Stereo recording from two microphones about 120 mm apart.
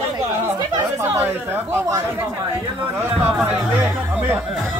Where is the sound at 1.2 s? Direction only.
20° right (ahead or behind).